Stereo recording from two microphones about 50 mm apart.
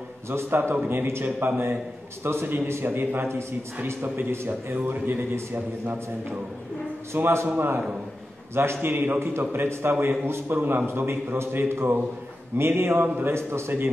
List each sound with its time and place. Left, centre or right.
0.3 s a man's voice: right
4.8 s a man's voice: right
5.3 s a man's voice: right
7.2 s a man's voice: right
8.8 s a man's voice: right
9.7 s a man's voice: right
12.9 s a man's voice: right
13.3 s a man's voice: right